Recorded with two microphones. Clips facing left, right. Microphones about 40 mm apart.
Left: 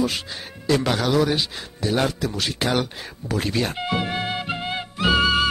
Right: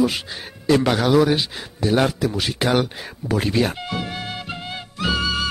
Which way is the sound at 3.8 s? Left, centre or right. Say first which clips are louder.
Left 3 dB; left.